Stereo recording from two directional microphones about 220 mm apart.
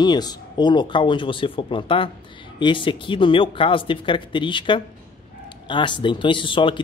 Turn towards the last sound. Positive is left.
turn(degrees=20)  # may be behind; listen again after turning